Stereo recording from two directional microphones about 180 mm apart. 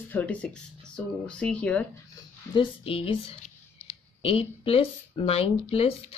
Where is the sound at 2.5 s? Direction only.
30° left (ahead or behind).